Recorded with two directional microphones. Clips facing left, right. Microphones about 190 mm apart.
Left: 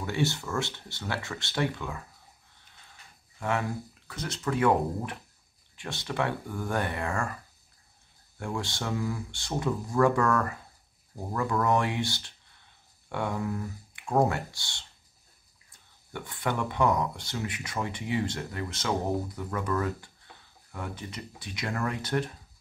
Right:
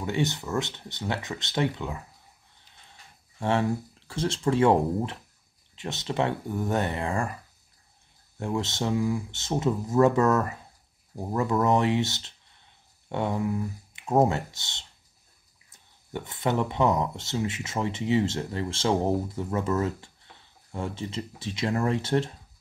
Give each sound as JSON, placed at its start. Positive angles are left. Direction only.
{"t": 0.0, "sound": "speech", "side_deg": -20}
{"t": 3.3, "sound": "speech", "side_deg": -30}
{"t": 8.4, "sound": "speech", "side_deg": -20}
{"t": 16.1, "sound": "speech", "side_deg": -20}